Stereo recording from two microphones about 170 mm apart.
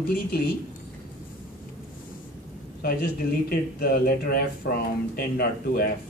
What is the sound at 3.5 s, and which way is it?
Speech, 60° left (ahead or behind).